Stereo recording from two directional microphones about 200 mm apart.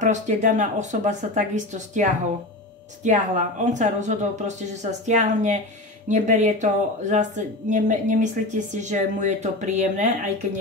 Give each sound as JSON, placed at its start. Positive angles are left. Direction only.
{"t": 0.0, "sound": "speech", "side_deg": -40}